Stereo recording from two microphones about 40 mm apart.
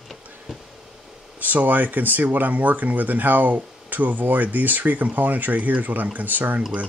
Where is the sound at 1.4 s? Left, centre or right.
Right.